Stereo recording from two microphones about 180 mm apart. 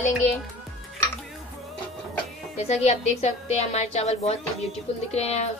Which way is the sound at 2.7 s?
40° left (ahead or behind).